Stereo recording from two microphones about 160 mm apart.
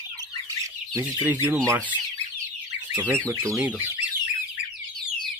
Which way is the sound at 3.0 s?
15° right (ahead or behind).